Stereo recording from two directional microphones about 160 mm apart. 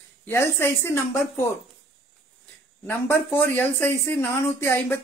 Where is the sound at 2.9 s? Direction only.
10° left (ahead or behind).